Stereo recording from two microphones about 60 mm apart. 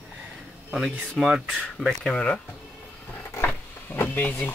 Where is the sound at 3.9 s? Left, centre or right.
Left.